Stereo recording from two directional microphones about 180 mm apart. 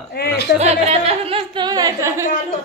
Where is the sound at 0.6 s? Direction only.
35° right (ahead or behind); by 2.2 s 15° right (ahead or behind).